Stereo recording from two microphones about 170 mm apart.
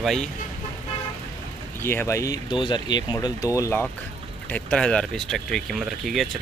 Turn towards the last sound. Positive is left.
turn(degrees=0)  # may be behind; listen again after turning